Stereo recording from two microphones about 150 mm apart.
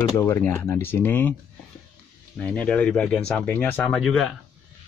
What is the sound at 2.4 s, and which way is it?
Speech, 10° left (ahead or behind).